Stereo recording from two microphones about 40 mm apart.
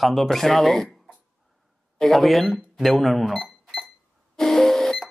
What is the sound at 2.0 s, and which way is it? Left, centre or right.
Speech, centre.